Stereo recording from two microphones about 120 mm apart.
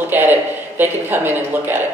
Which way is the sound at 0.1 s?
15° right (ahead or behind).